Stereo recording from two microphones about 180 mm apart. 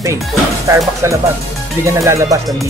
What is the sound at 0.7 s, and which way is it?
Speech, 15° right (ahead or behind).